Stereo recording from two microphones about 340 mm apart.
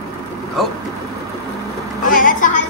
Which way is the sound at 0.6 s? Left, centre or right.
Centre.